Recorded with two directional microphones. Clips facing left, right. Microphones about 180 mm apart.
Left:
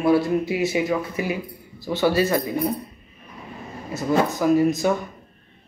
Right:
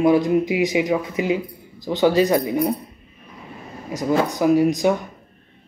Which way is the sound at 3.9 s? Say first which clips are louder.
Right 1 dB; 15° right (ahead or behind).